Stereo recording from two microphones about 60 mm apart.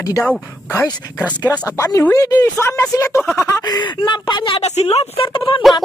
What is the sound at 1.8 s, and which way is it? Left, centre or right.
Speech, left.